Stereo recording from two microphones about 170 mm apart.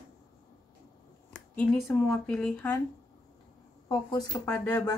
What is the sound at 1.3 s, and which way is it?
Speech, 5° left (ahead or behind).